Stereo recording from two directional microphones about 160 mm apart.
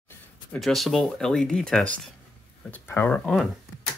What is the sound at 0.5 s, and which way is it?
Speech, centre (ahead or behind).